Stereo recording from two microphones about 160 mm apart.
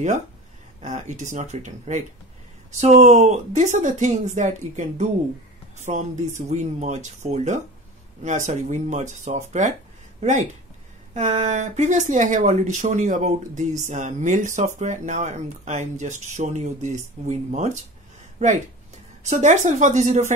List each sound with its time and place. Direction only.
0.8 s speech: 50° right (ahead or behind)